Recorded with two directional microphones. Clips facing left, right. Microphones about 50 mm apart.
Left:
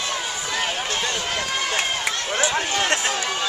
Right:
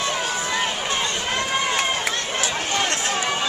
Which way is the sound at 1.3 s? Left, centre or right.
Right.